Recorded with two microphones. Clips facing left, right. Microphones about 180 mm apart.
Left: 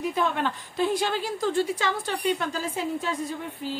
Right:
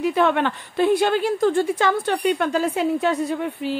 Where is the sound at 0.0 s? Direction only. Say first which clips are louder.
Right 7 dB; 70° right (ahead or behind).